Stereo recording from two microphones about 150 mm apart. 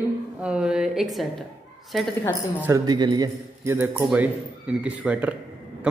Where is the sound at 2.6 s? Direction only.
25° right (ahead or behind).